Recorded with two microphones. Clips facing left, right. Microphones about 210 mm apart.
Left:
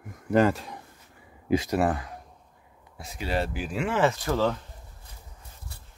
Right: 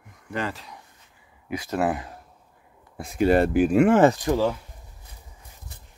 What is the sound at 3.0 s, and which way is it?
Speech, 50° right (ahead or behind).